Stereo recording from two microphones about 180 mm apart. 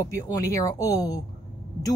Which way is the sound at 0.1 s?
15° left (ahead or behind).